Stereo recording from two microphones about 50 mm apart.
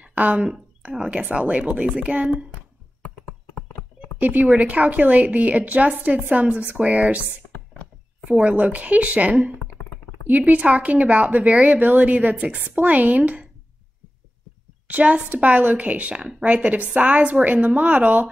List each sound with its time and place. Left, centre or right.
0.1 s a woman's voice: right
4.2 s a woman's voice: right
8.3 s a woman's voice: right
11.3 s speech: centre
11.6 s a woman's voice: right
14.9 s a woman's voice: right